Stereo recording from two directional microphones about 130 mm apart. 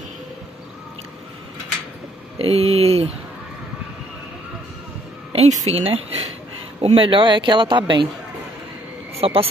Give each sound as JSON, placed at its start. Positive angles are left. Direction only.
{"t": 2.3, "sound": "speech", "side_deg": -50}
{"t": 5.3, "sound": "a sound", "side_deg": -55}
{"t": 5.7, "sound": "a man's voice", "side_deg": -50}
{"t": 9.2, "sound": "speech", "side_deg": -45}